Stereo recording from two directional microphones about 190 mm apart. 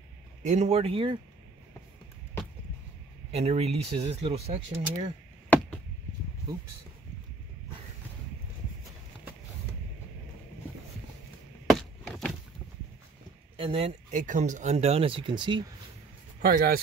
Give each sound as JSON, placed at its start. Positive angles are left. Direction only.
{"t": 0.4, "sound": "speech", "side_deg": -40}
{"t": 3.3, "sound": "speech", "side_deg": -35}
{"t": 11.7, "sound": "a sound", "side_deg": 0}
{"t": 13.6, "sound": "speech", "side_deg": -30}
{"t": 16.3, "sound": "speech", "side_deg": -50}